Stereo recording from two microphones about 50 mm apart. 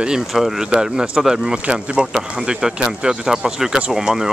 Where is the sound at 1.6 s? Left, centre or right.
Right.